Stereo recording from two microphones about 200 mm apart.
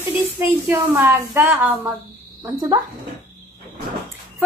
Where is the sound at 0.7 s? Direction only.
10° right (ahead or behind).